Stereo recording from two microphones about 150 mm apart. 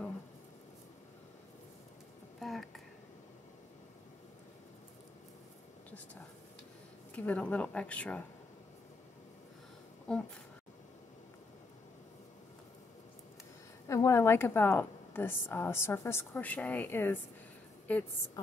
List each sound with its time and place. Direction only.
2.4 s a sound: centre (ahead or behind)
7.2 s a woman's voice: 10° left (ahead or behind)
10.1 s speech: 5° left (ahead or behind)
13.8 s a woman's voice: 20° left (ahead or behind)